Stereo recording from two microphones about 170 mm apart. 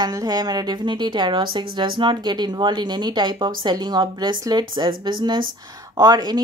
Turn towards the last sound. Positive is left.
turn(degrees=-25)  # may be behind; listen again after turning